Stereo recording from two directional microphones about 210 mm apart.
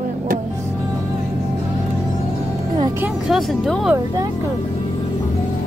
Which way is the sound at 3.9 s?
15° right (ahead or behind).